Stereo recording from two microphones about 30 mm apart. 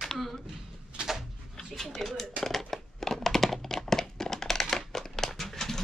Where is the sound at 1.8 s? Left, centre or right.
Centre.